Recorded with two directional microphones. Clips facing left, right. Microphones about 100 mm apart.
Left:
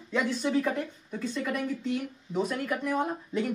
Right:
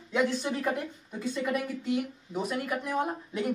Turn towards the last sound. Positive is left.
turn(degrees=-10)  # may be behind; listen again after turning